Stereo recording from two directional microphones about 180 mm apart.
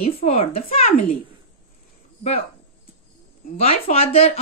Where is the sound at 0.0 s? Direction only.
35° left (ahead or behind).